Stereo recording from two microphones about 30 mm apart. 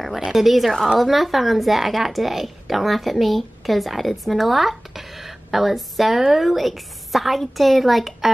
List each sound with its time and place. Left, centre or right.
0.3 s speech: centre